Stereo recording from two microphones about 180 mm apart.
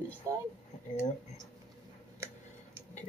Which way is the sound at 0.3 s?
15° right (ahead or behind).